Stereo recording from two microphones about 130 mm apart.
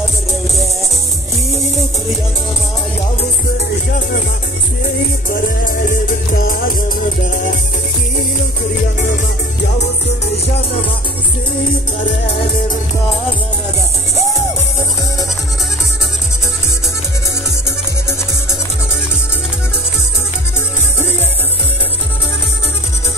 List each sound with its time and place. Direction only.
5.7 s music: 90° left
8.9 s music: 70° left (ahead or behind)